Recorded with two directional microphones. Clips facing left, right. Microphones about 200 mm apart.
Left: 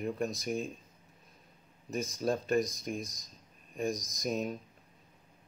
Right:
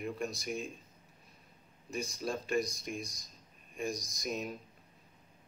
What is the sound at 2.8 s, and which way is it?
Speech, 40° left (ahead or behind).